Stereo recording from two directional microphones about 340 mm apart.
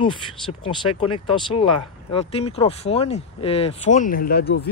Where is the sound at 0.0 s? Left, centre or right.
Centre.